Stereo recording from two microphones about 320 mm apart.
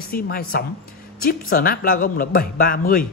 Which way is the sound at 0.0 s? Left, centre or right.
Left.